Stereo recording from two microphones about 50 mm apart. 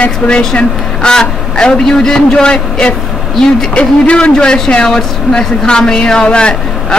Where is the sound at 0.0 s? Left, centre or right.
Centre.